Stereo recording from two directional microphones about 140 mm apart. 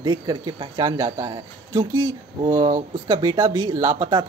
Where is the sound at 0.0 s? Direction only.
35° right (ahead or behind).